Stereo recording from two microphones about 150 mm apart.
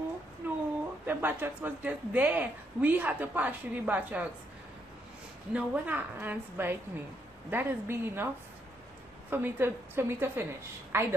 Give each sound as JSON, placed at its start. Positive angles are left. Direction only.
{"t": 0.4, "sound": "a sound", "side_deg": -10}
{"t": 1.0, "sound": "a woman's voice", "side_deg": -15}
{"t": 5.5, "sound": "a woman's voice", "side_deg": -10}
{"t": 9.3, "sound": "a woman's voice", "side_deg": -15}